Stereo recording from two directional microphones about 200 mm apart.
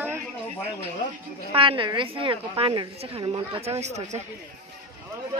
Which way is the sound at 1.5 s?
25° right (ahead or behind).